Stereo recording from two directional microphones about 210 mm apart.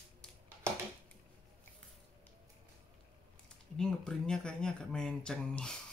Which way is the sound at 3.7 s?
5° left (ahead or behind).